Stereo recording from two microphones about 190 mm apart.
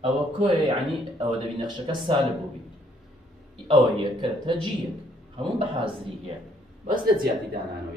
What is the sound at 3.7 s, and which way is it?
Speech, 25° right (ahead or behind).